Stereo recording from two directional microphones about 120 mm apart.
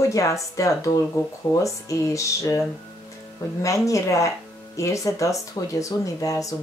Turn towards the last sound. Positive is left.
turn(degrees=30)  # may be behind; listen again after turning